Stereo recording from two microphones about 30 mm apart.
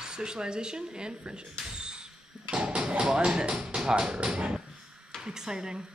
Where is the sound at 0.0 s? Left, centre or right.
Right.